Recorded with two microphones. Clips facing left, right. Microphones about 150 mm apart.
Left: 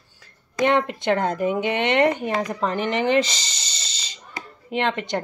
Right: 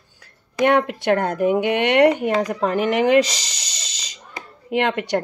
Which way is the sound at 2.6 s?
10° right (ahead or behind).